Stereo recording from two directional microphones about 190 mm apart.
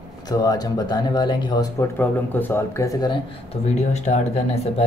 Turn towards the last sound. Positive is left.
turn(degrees=35)  # may be behind; listen again after turning